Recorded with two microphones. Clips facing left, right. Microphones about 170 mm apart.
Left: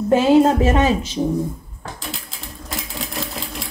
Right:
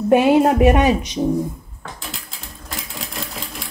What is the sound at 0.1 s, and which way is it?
Speech, 20° right (ahead or behind).